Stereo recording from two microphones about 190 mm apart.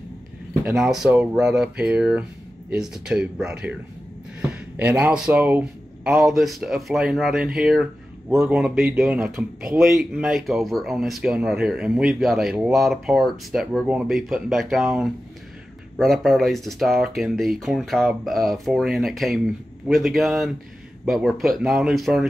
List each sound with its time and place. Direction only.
0.7 s speech: 5° right (ahead or behind)